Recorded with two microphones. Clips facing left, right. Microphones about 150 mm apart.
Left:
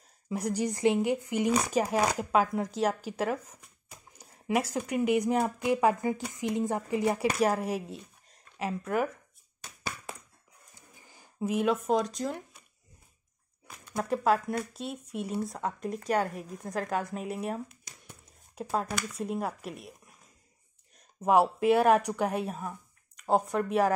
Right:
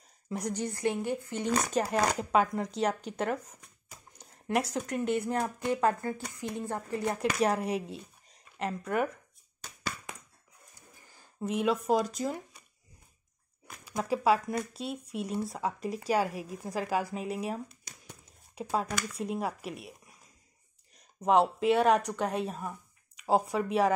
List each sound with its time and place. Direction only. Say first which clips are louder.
0.3 s speech: left 3 dB; 5° left (ahead or behind)
11.0 s a sound: left 4 dB; 15° left (ahead or behind)
11.4 s speech: left 1 dB; centre (ahead or behind)
13.7 s speech: even; centre (ahead or behind)
17.8 s a sound: right 1 dB; centre (ahead or behind)
20.9 s speech: left 1 dB; 5° left (ahead or behind)